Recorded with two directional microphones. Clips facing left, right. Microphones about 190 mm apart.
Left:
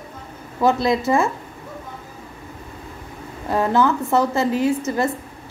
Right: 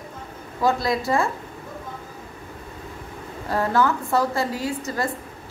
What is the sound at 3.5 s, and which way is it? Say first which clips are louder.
A woman's voice: left 3 dB; 20° left (ahead or behind).